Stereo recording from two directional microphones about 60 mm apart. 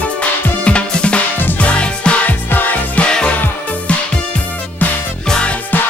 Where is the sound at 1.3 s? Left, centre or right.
Left.